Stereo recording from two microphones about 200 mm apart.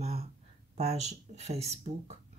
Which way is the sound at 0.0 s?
30° right (ahead or behind).